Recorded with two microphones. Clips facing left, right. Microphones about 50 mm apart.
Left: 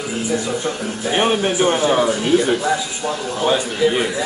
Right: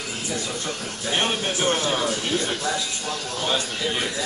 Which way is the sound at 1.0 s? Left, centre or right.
Centre.